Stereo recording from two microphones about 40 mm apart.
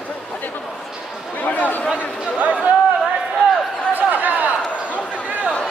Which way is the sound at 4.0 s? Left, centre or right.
Right.